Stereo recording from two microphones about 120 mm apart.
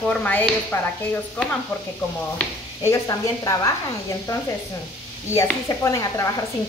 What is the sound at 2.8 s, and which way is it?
Speech, 30° left (ahead or behind).